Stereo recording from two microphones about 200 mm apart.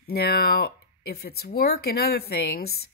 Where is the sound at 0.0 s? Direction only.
50° left (ahead or behind).